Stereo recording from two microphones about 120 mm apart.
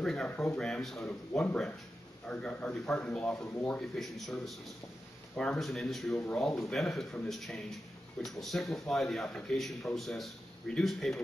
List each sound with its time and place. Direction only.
0.0 s a man's voice: 5° left (ahead or behind)